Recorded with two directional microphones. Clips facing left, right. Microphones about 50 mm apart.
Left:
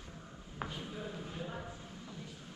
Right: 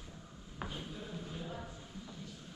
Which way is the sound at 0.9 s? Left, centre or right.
Centre.